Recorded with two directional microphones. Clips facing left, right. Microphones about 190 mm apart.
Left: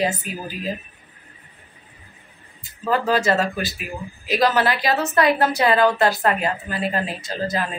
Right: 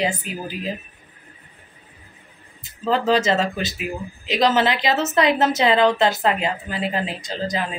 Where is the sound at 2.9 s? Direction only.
20° right (ahead or behind).